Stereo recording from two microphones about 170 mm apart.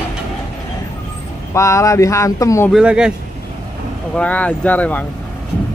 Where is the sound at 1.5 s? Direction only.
15° left (ahead or behind).